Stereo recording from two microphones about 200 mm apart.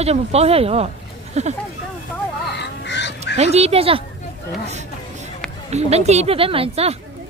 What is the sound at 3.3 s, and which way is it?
Speech, 30° right (ahead or behind).